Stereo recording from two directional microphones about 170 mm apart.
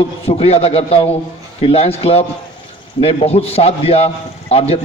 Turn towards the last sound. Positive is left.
turn(degrees=40)  # may be behind; listen again after turning